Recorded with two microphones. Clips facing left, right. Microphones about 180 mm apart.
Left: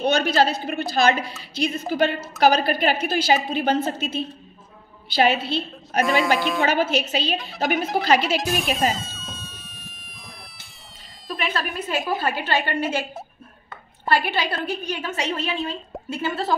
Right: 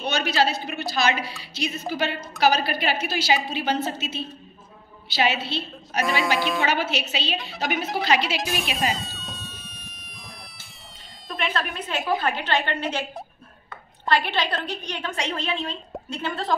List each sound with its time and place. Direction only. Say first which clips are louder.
0.0 s a woman's voice: left 4 dB; 50° left (ahead or behind)
6.3 s speech: left 2 dB; centre (ahead or behind)
6.6 s a woman's voice: left 4 dB; 50° left (ahead or behind)
8.4 s music: left 4 dB; centre (ahead or behind)
11.2 s a woman's voice: left 1 dB; centre (ahead or behind)